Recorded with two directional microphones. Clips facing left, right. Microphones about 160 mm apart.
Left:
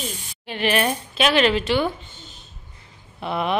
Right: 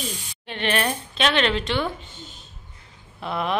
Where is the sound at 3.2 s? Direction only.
5° left (ahead or behind).